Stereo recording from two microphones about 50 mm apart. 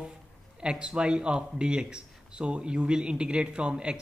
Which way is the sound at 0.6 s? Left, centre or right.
Centre.